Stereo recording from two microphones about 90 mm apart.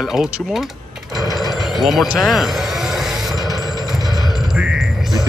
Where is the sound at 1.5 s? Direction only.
Centre (ahead or behind).